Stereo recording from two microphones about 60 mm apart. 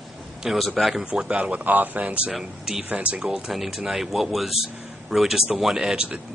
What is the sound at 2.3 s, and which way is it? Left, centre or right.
Speech, centre.